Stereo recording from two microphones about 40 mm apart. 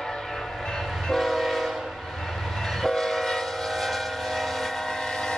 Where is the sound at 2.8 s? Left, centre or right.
Centre.